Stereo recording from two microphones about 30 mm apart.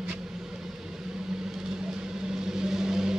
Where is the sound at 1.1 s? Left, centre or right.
Centre.